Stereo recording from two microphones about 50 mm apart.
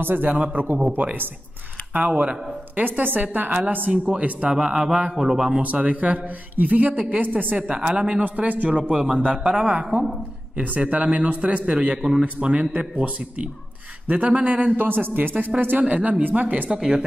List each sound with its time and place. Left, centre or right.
0.0 s a man's voice: right
2.0 s a man's voice: right
2.8 s a man's voice: right
4.6 s speech: centre
5.6 s a man's voice: right
7.5 s a man's voice: right
15.8 s a man's voice: right
16.7 s speech: centre